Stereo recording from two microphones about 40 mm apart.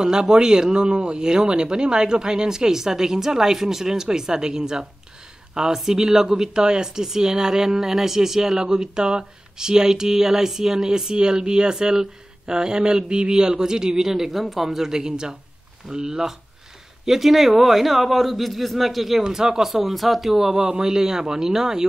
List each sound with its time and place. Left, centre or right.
0.0 s speech: centre
15.0 s a man's voice: centre
19.2 s speech: centre
20.5 s speech: right
20.8 s speech: centre